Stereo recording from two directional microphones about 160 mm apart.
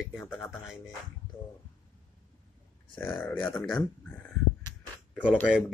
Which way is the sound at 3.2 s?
10° left (ahead or behind).